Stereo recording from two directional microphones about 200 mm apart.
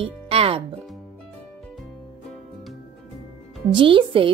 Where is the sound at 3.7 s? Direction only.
25° right (ahead or behind).